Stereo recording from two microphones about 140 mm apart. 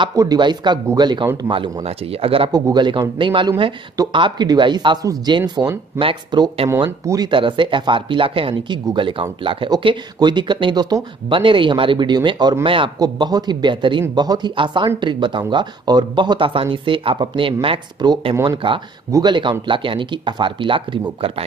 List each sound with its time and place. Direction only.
0.1 s speech: 25° right (ahead or behind)
1.5 s speech: 35° right (ahead or behind)
2.5 s speech: 30° right (ahead or behind)
13.0 s speech: 30° right (ahead or behind)